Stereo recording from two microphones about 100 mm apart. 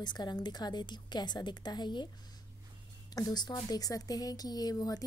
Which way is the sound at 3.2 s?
40° left (ahead or behind).